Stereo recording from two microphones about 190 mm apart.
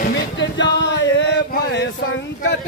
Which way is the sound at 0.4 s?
70° left (ahead or behind).